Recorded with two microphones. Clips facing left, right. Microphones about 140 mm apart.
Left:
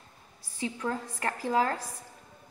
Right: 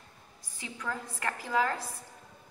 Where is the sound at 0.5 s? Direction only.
35° left (ahead or behind).